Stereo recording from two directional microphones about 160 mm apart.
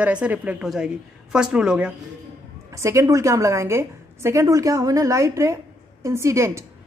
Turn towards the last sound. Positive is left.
turn(degrees=-20)  # may be behind; listen again after turning